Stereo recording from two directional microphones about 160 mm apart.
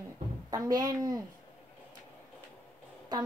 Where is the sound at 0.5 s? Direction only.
25° right (ahead or behind).